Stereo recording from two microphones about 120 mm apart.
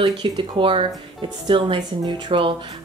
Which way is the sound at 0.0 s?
45° right (ahead or behind).